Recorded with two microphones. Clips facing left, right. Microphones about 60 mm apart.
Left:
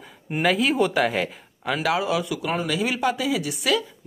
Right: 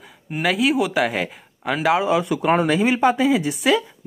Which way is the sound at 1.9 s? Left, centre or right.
Right.